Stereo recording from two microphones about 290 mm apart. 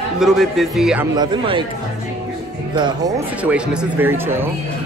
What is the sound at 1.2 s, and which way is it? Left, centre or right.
Speech, centre.